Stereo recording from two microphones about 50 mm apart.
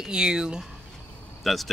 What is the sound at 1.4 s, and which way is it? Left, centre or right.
Speech, centre.